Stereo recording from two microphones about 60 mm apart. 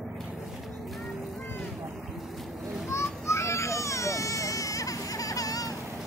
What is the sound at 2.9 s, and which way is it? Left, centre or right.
Baby cry, left.